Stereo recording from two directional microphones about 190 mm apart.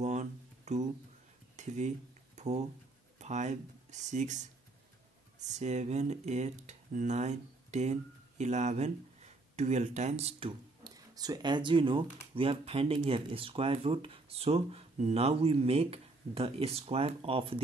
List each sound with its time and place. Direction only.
0.0 s a sound: 35° right (ahead or behind)
3.2 s speech: 40° right (ahead or behind)
5.5 s speech: 35° right (ahead or behind)
10.8 s speech: 20° right (ahead or behind)